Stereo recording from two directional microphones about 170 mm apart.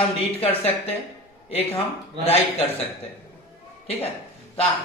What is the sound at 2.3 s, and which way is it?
Speech, 35° left (ahead or behind).